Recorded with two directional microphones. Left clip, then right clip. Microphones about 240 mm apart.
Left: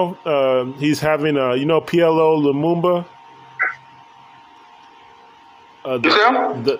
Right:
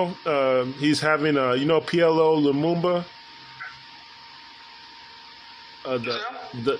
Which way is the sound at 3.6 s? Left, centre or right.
Left.